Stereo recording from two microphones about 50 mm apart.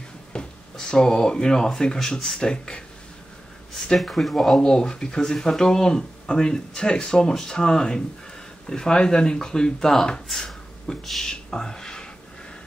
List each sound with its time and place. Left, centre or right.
0.3 s speech: centre
3.7 s speech: centre
4.6 s speech: centre